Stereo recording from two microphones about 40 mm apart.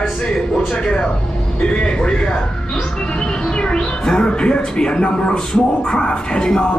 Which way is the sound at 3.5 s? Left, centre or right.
Centre.